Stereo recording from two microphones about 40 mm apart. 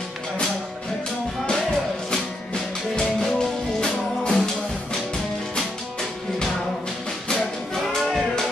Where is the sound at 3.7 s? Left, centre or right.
Centre.